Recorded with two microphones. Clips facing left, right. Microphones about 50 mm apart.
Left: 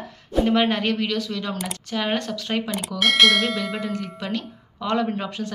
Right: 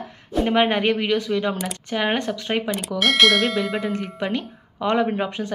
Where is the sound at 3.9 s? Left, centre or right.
Right.